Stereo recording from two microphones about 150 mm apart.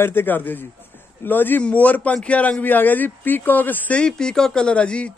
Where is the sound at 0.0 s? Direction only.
15° left (ahead or behind).